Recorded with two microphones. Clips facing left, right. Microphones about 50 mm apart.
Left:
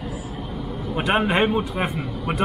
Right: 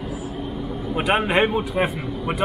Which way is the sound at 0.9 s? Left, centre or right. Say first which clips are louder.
Even; centre.